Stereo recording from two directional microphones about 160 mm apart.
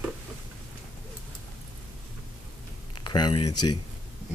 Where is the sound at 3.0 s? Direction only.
30° left (ahead or behind).